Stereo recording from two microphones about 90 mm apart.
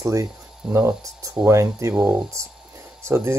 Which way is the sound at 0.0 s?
35° right (ahead or behind).